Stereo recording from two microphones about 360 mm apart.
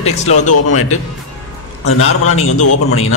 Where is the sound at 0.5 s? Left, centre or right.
Left.